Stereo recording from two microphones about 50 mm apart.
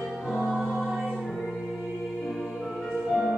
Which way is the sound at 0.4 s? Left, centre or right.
Centre.